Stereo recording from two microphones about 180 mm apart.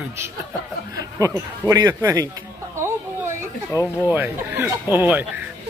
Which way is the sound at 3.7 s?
15° left (ahead or behind).